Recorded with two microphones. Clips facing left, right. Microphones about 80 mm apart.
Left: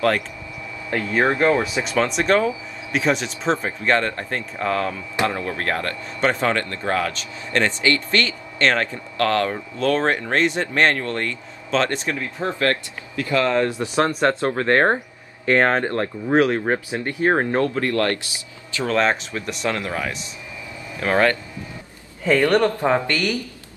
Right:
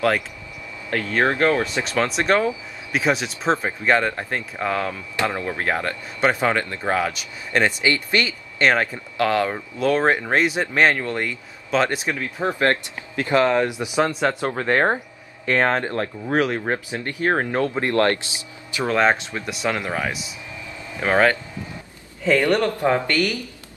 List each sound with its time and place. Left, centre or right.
0.8 s speech: centre
1.6 s speech: centre
15.4 s speech: centre
17.7 s speech: right
18.7 s speech: centre
22.2 s speech: left